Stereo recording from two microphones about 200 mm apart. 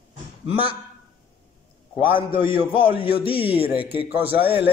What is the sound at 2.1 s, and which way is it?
Speech, 25° left (ahead or behind).